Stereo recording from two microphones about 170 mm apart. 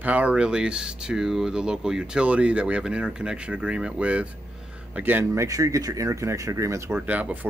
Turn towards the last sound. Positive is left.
turn(degrees=-10)  # may be behind; listen again after turning